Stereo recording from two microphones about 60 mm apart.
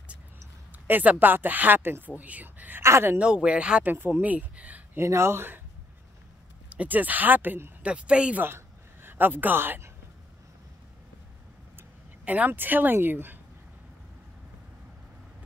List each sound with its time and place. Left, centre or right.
0.8 s speech: right
2.8 s speech: right
3.2 s speech: centre
3.8 s speech: right
4.9 s speech: right
6.7 s speech: right
7.8 s speech: centre
8.4 s a woman's voice: right
12.3 s speech: right